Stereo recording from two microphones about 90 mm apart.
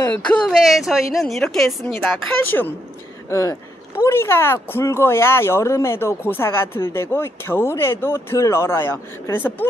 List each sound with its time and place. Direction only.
0.0 s speech: 15° left (ahead or behind)
0.6 s a woman's voice: centre (ahead or behind)
2.5 s speech: 30° left (ahead or behind)